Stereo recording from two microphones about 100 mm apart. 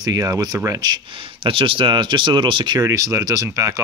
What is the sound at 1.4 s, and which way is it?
Speech, 60° right (ahead or behind).